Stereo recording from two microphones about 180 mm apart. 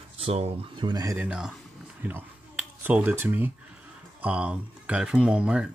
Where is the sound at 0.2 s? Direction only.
35° right (ahead or behind).